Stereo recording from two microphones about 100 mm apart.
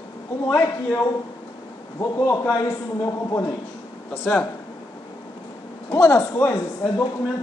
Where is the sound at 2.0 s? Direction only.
30° left (ahead or behind).